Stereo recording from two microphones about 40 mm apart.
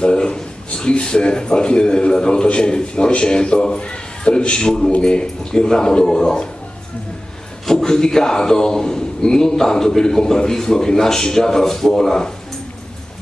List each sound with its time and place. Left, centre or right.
0.0 s a man's voice: left
7.6 s a man's voice: centre